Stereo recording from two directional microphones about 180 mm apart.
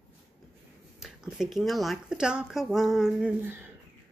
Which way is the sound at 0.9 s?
5° right (ahead or behind).